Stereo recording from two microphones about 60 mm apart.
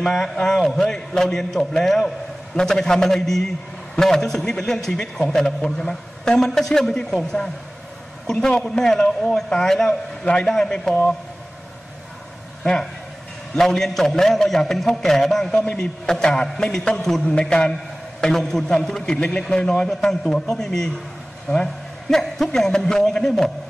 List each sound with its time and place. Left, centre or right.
0.0 s a man's voice: centre
13.6 s a man's voice: centre